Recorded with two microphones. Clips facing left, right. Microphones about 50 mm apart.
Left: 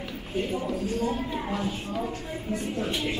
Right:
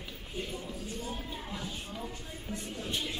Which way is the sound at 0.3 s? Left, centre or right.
Left.